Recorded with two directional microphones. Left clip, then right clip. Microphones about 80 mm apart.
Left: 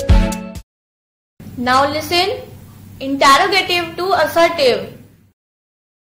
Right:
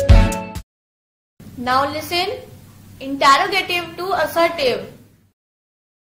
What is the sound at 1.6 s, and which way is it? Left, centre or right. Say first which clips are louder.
A woman's voice: left 4 dB; left.